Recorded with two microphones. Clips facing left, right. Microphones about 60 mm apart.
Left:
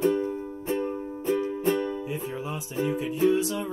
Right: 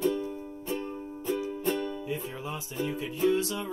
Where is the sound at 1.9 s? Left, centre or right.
Left.